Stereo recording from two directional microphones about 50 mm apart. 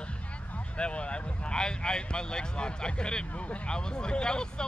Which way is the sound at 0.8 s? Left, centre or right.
Left.